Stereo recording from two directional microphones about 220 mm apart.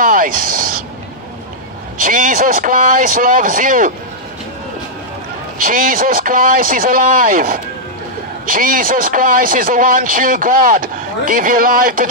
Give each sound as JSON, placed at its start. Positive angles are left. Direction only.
{"t": 0.0, "sound": "a sound", "side_deg": -40}
{"t": 2.0, "sound": "speech", "side_deg": -35}
{"t": 5.6, "sound": "speech", "side_deg": -40}